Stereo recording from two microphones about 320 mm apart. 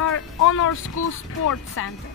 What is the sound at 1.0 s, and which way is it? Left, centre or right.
Speech, left.